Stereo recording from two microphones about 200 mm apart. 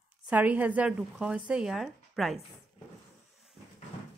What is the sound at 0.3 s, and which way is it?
A woman's voice, 10° right (ahead or behind).